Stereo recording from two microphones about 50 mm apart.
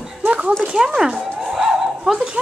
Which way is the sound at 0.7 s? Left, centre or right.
Centre.